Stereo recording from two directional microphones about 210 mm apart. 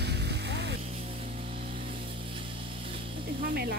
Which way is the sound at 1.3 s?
30° right (ahead or behind).